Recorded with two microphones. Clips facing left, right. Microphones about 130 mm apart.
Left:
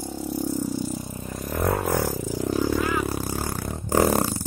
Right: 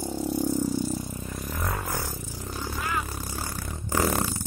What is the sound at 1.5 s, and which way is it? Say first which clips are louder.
Vehicle: left 10 dB; 65° left (ahead or behind).